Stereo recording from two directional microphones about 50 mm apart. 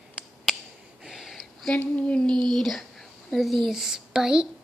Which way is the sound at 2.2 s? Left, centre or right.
Centre.